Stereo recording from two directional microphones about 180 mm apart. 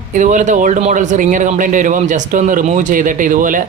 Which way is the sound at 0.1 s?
45° right (ahead or behind).